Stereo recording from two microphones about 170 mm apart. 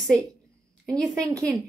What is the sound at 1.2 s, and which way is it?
Speech, 20° right (ahead or behind).